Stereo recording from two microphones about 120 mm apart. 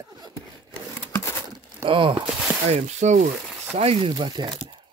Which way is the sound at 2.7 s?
70° right (ahead or behind).